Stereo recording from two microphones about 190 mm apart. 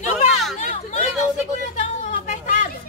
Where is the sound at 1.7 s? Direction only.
40° left (ahead or behind).